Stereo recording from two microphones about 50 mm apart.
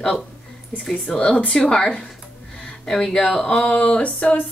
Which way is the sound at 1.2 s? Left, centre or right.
Left.